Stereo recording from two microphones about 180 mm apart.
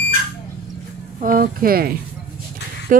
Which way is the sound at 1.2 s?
50° right (ahead or behind).